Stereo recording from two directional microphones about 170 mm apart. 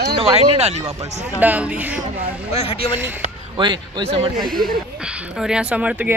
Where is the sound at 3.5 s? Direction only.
25° right (ahead or behind).